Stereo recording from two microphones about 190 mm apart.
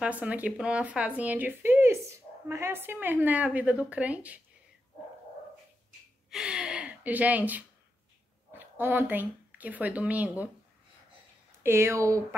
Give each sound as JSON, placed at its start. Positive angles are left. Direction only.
{"t": 0.0, "sound": "speech", "side_deg": -5}
{"t": 6.3, "sound": "gasp", "side_deg": -5}
{"t": 8.5, "sound": "speech", "side_deg": -10}
{"t": 11.6, "sound": "speech", "side_deg": -15}